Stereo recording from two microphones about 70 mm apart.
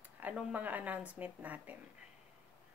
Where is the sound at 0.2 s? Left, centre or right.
Right.